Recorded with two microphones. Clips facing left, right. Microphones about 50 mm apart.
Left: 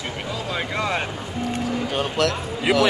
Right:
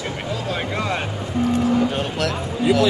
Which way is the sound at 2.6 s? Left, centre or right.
Left.